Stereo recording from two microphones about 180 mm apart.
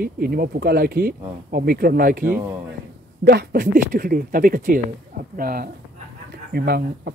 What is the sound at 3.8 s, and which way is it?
Speech, 50° right (ahead or behind).